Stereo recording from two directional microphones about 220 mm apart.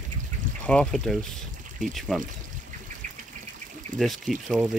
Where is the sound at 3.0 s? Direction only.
35° right (ahead or behind).